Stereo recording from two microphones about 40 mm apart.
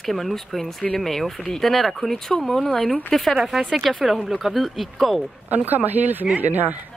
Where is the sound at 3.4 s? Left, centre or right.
Centre.